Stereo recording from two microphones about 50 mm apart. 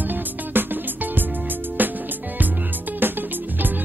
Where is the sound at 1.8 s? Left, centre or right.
Right.